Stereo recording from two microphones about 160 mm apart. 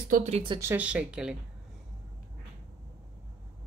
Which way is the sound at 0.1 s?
45° right (ahead or behind).